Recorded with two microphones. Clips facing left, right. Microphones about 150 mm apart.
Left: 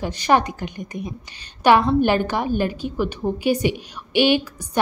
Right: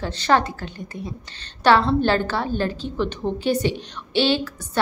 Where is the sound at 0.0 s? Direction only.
15° left (ahead or behind).